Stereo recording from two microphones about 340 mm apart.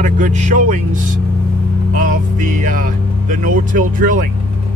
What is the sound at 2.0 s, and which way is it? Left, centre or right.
Speech, right.